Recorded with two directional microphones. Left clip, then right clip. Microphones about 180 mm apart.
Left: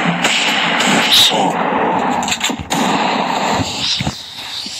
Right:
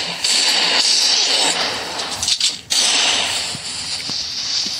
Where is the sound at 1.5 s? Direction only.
40° right (ahead or behind).